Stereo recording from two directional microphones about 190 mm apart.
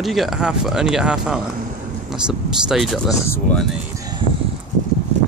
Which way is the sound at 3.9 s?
20° right (ahead or behind).